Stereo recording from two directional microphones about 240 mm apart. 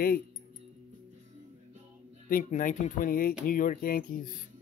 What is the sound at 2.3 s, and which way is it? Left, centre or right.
Speech, left.